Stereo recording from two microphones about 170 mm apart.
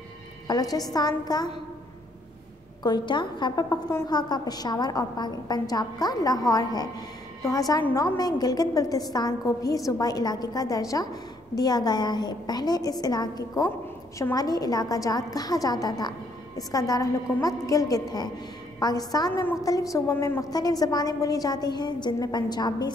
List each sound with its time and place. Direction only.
0.5 s a woman's voice: 20° left (ahead or behind)
2.8 s a woman's voice: 25° left (ahead or behind)